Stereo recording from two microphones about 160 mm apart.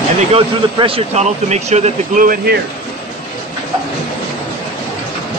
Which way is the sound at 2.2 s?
65° right (ahead or behind).